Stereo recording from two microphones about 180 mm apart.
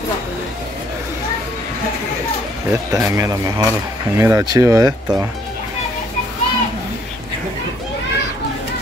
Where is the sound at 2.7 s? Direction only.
15° right (ahead or behind).